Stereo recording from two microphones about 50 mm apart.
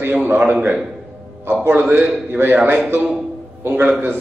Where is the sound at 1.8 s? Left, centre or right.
Right.